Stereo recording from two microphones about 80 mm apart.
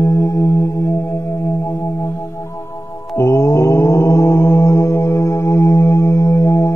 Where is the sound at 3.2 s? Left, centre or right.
Left.